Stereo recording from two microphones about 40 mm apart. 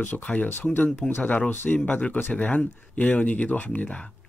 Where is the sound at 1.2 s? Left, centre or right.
Left.